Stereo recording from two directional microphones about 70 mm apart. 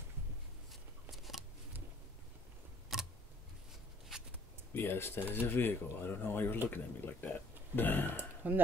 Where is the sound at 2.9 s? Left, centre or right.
Centre.